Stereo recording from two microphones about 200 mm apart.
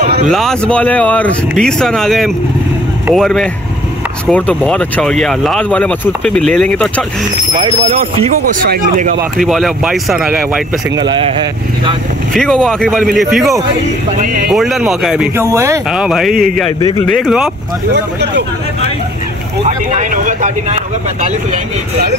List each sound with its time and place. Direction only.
0.0 s a sound: 40° right (ahead or behind)
0.3 s speech: centre (ahead or behind)
7.8 s speech: 35° right (ahead or behind); by 9.2 s 50° right (ahead or behind)
9.4 s speech: centre (ahead or behind)
11.0 s speech: 25° right (ahead or behind)
12.4 s speech: 5° left (ahead or behind)
14.2 s speech: 45° right (ahead or behind)
14.5 s speech: centre (ahead or behind)
15.3 s speech: 15° right (ahead or behind)
15.9 s speech: centre (ahead or behind)
19.6 s speech: 40° right (ahead or behind)